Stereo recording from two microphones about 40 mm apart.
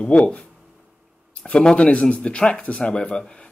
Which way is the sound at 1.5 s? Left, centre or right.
Left.